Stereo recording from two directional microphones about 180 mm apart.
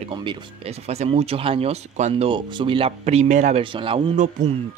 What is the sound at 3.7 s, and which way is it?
Speech, 30° right (ahead or behind).